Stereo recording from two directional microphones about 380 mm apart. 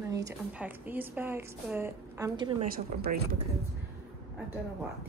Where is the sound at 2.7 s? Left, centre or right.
Right.